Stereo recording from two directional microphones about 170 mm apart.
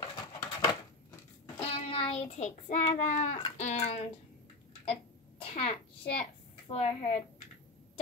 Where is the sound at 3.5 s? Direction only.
45° left (ahead or behind).